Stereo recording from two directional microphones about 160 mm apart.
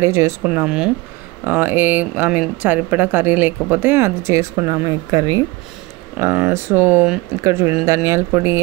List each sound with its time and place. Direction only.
0.0 s speech: 20° right (ahead or behind)